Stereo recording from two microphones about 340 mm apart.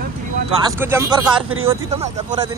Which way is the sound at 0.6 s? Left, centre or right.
Centre.